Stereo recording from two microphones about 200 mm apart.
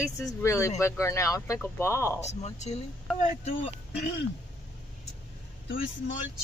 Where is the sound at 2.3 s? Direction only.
35° left (ahead or behind).